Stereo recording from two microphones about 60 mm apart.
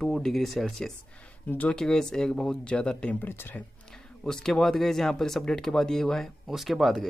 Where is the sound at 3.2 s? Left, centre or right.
Left.